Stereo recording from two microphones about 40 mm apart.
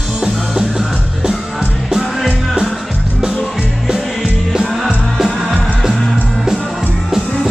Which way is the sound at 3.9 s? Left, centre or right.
Centre.